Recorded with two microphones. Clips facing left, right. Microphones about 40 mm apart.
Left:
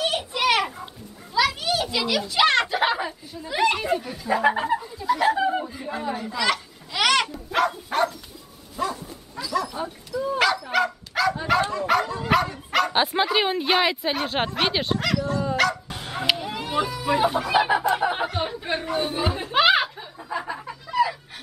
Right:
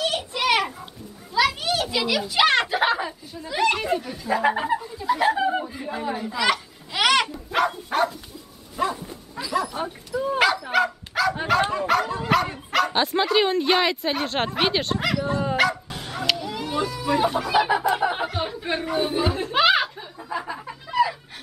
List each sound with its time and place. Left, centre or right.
0.2 s a sound: centre
1.3 s children playing: centre
1.8 s a sound: centre
3.4 s speech: centre
7.5 s dog: centre
8.7 s dog: centre
10.4 s dog: centre
12.9 s speech: centre
15.0 s speech: centre
15.2 s speech: right
15.5 s dog: centre
15.9 s bow-wow: centre
16.2 s a sound: left
16.5 s chicken: centre